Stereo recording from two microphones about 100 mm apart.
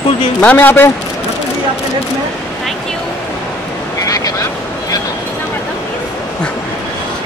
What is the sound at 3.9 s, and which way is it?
Vehicle, 35° left (ahead or behind).